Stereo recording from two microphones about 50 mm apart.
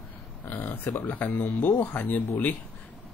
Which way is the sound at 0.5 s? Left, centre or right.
Left.